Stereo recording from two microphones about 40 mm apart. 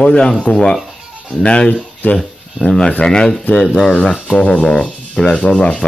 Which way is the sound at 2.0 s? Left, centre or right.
Left.